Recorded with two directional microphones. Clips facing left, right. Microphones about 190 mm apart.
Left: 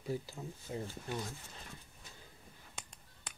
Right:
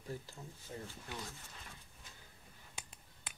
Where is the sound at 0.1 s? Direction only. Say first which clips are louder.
Left 7 dB; 10° left (ahead or behind).